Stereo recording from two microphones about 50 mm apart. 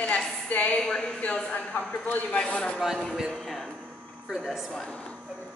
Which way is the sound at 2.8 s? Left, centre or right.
Centre.